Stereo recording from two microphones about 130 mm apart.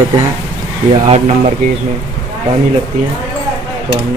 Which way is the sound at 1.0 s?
55° right (ahead or behind).